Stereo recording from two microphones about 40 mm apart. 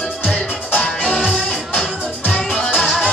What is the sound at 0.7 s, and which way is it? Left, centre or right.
Music, left.